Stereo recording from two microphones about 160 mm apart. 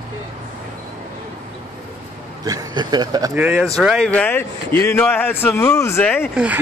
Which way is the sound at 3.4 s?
10° right (ahead or behind).